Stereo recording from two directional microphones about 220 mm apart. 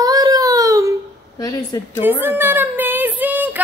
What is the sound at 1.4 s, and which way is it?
Speech, 15° left (ahead or behind).